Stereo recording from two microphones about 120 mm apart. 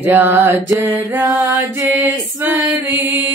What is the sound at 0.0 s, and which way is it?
Mantra, 15° right (ahead or behind).